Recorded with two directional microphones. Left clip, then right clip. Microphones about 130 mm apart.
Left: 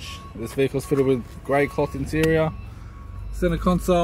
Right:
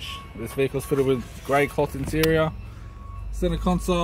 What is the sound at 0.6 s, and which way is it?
Speech, 15° left (ahead or behind).